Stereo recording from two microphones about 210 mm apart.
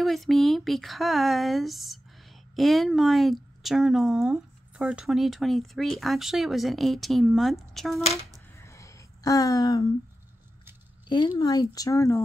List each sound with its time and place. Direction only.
0.0 s speech: centre (ahead or behind)
8.5 s a sound: 15° left (ahead or behind)
11.1 s speech: 20° left (ahead or behind)